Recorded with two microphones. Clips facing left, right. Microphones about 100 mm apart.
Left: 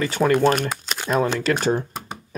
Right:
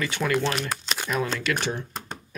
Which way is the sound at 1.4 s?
40° left (ahead or behind).